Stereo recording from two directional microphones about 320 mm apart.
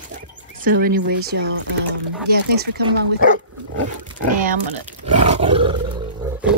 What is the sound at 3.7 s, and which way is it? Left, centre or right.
Speech, right.